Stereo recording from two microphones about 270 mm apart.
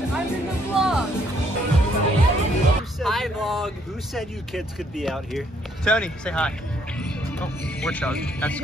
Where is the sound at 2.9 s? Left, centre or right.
Centre.